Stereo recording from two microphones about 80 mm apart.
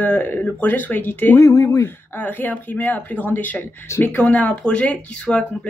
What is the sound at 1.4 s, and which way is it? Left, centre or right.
Speech, left.